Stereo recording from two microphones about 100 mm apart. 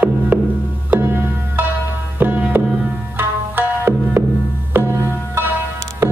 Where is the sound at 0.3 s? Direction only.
15° right (ahead or behind).